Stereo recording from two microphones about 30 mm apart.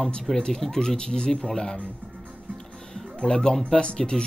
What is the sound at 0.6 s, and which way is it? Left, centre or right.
Speech, centre.